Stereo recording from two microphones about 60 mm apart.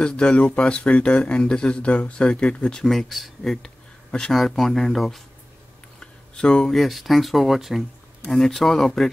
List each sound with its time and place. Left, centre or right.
0.0 s speech: centre
5.9 s speech: centre